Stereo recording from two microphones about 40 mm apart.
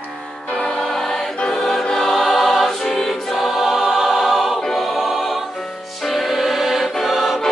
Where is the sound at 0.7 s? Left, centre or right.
Centre.